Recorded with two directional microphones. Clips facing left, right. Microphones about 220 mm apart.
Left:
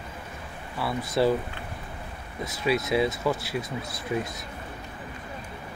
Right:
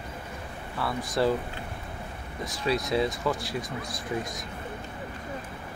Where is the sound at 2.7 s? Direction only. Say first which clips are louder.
Left 2 dB; 20° left (ahead or behind).